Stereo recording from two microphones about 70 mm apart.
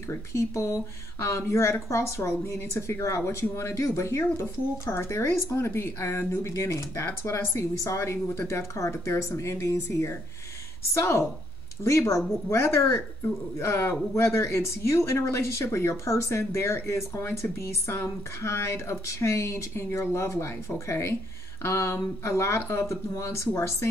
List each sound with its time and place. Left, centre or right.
0.1 s speech: left